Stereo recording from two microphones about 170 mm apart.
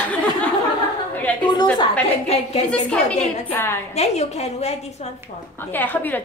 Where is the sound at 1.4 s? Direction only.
25° left (ahead or behind).